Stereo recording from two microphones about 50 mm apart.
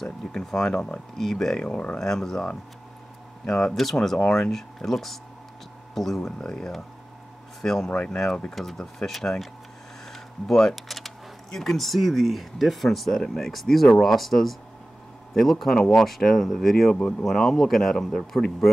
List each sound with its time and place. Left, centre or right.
0.0 s speech: centre
2.0 s speech: centre
3.4 s speech: centre
3.7 s speech: centre
6.3 s speech: centre
7.9 s speech: left
8.5 s speech: centre
15.6 s speech: centre